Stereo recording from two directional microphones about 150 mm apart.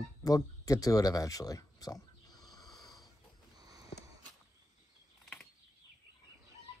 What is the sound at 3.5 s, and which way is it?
Sniff, 25° right (ahead or behind).